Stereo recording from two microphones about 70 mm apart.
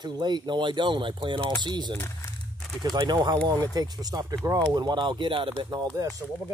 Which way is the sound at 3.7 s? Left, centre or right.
Right.